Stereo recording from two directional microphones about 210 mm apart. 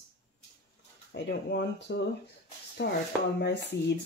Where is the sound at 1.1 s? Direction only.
55° left (ahead or behind).